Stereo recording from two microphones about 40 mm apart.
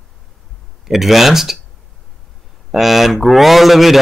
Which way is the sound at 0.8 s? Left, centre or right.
Centre.